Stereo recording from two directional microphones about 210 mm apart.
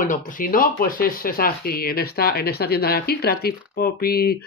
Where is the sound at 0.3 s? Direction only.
40° left (ahead or behind).